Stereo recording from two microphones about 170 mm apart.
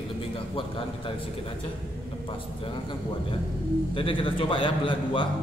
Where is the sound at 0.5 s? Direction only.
30° left (ahead or behind).